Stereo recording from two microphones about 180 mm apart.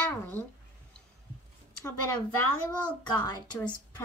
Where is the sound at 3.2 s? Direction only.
20° left (ahead or behind).